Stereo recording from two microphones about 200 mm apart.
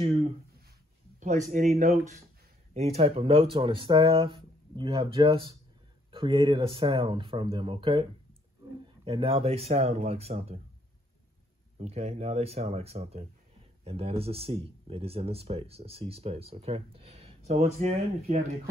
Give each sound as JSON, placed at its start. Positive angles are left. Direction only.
{"t": 0.0, "sound": "speech", "side_deg": -30}
{"t": 1.5, "sound": "speech", "side_deg": -35}
{"t": 11.8, "sound": "speech", "side_deg": -35}